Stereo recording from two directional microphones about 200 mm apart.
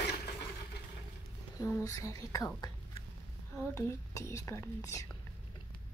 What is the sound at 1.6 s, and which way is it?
Speech, 15° left (ahead or behind).